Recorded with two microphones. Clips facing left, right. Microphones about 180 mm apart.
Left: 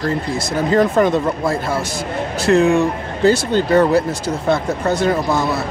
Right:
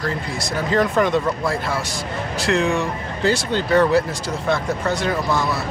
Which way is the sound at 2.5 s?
35° left (ahead or behind).